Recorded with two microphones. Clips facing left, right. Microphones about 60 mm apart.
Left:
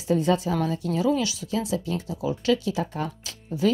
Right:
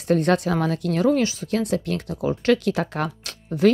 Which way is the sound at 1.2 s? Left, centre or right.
Right.